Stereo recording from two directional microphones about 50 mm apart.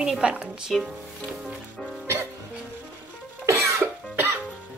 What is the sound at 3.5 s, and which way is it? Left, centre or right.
Cough, right.